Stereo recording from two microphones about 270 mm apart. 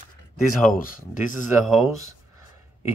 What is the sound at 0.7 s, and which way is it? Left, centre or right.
Speech, left.